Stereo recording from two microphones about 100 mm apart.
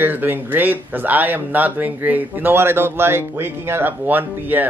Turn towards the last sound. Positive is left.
turn(degrees=-20)  # may be behind; listen again after turning